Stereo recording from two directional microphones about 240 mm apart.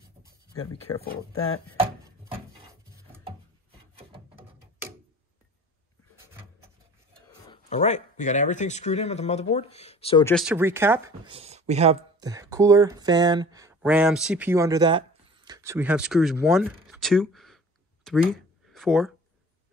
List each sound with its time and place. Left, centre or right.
1.8 s a sound: centre
7.4 s speech: left
10.4 s speech: centre
11.3 s speech: right
12.2 s speech: centre
18.3 s a sound: centre